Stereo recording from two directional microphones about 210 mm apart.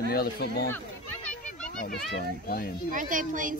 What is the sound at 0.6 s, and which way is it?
Children playing, 10° left (ahead or behind).